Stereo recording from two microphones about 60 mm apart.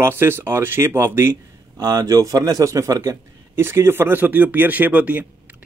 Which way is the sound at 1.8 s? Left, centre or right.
Right.